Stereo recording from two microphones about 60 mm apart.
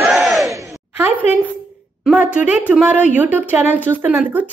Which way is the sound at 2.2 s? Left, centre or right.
Right.